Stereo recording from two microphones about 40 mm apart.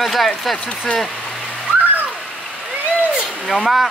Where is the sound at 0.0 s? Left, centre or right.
Centre.